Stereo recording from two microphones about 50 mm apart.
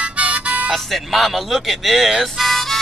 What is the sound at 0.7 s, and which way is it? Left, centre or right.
Speech, centre.